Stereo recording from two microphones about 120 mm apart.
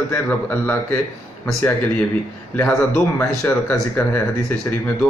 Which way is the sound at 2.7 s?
10° left (ahead or behind).